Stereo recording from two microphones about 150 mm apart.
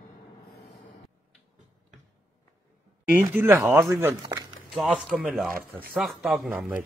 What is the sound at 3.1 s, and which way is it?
Speech, 15° right (ahead or behind).